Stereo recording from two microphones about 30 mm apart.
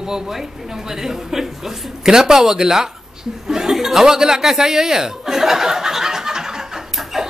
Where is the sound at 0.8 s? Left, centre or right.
Centre.